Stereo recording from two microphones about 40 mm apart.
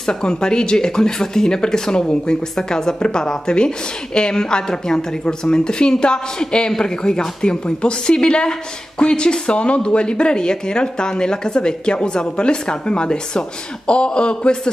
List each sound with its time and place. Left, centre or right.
0.0 s speech: left